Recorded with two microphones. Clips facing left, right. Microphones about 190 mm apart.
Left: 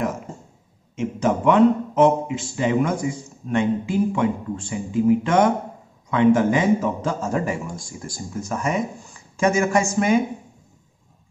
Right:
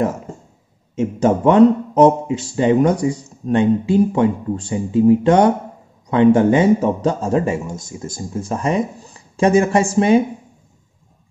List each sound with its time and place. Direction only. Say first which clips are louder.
0.9 s speech: right 5 dB; 40° right (ahead or behind)